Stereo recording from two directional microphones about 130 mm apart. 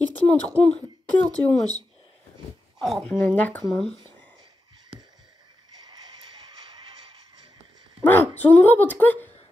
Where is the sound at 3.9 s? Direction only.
35° right (ahead or behind).